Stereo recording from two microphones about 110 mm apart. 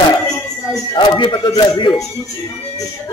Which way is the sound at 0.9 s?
45° left (ahead or behind).